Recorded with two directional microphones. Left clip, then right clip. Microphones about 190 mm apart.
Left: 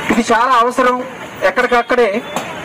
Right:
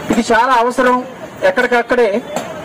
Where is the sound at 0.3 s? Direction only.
25° left (ahead or behind).